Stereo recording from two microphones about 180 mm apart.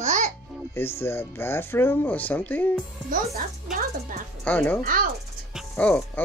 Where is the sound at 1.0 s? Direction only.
15° left (ahead or behind).